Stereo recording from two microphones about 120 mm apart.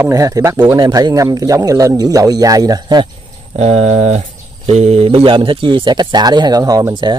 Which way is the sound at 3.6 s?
60° right (ahead or behind).